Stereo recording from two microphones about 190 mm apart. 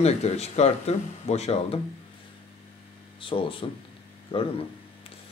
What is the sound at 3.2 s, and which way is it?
Speech, 30° left (ahead or behind).